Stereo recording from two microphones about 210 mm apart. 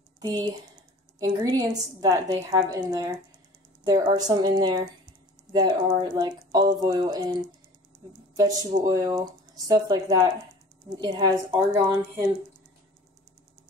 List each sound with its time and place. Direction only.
0.2 s a woman's voice: 20° right (ahead or behind)
8.4 s a woman's voice: 15° right (ahead or behind)